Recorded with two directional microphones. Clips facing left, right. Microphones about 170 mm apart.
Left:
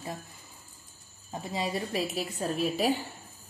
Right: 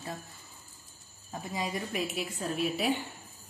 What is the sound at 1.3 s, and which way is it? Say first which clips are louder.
A woman's voice: left 3 dB; 25° left (ahead or behind).